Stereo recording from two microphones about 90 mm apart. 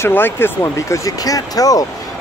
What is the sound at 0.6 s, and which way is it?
Speech, 35° left (ahead or behind).